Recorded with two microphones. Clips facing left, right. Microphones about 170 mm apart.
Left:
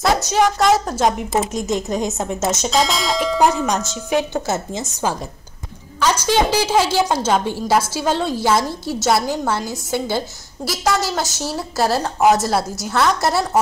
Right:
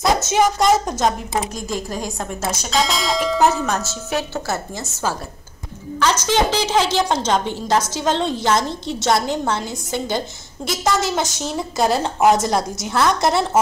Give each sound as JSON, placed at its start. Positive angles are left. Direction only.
{"t": 0.0, "sound": "a woman's voice", "side_deg": 0}
{"t": 1.5, "sound": "a woman's voice", "side_deg": 20}
{"t": 2.7, "sound": "a woman's voice", "side_deg": 0}
{"t": 3.6, "sound": "a woman's voice", "side_deg": 15}
{"t": 5.9, "sound": "a woman's voice", "side_deg": 10}
{"t": 11.0, "sound": "a woman's voice", "side_deg": -20}
{"t": 11.3, "sound": "a woman's voice", "side_deg": 5}